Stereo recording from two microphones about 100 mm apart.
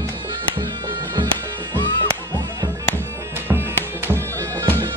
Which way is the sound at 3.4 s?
25° right (ahead or behind).